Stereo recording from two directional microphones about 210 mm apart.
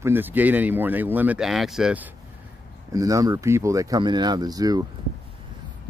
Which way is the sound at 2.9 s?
15° right (ahead or behind).